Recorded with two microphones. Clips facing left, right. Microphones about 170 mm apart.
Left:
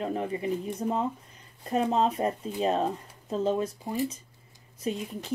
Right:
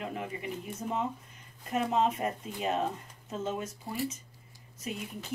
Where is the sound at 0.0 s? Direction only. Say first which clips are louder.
Left 7 dB; 35° left (ahead or behind).